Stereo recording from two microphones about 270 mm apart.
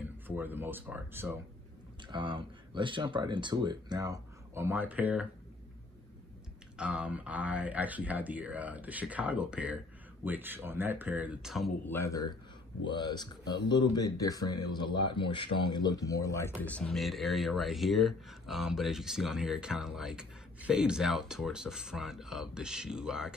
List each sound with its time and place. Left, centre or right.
0.3 s speech: centre
6.8 s speech: centre